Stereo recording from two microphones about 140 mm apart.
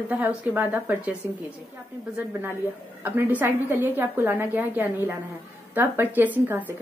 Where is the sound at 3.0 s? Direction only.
15° right (ahead or behind).